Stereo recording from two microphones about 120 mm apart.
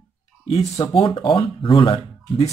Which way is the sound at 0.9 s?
45° left (ahead or behind).